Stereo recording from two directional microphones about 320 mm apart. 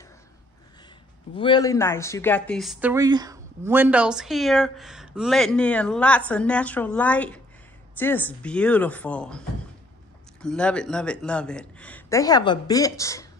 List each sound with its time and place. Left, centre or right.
1.3 s speech: centre
10.4 s speech: centre